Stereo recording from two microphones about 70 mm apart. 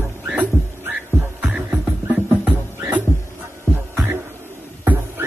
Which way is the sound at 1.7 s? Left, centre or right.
Right.